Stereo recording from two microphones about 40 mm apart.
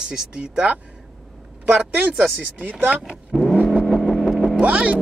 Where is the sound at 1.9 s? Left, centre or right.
Right.